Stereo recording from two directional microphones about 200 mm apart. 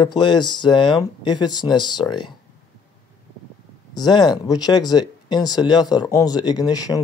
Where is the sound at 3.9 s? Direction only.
20° left (ahead or behind).